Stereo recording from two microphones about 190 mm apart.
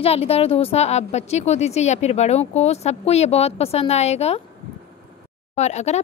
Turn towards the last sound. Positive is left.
turn(degrees=35)  # may be behind; listen again after turning